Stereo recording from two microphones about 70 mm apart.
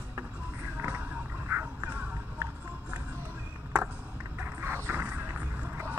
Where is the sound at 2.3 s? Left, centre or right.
Right.